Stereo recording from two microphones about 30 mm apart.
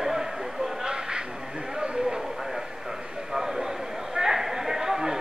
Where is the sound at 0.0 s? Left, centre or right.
Centre.